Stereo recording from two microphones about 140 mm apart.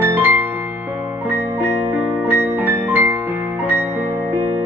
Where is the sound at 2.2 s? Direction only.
15° right (ahead or behind).